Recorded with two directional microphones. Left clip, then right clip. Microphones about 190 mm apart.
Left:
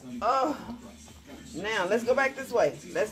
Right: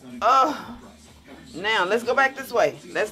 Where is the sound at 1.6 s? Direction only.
15° right (ahead or behind).